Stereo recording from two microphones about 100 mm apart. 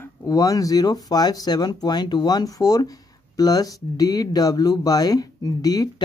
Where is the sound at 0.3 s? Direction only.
35° left (ahead or behind).